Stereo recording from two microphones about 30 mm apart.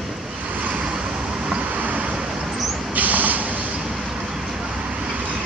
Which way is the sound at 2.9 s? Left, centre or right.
Right.